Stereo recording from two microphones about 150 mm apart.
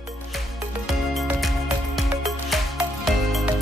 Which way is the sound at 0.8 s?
Centre (ahead or behind).